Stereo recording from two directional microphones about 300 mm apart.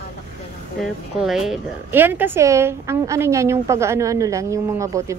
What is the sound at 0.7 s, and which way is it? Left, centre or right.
A woman's voice, centre.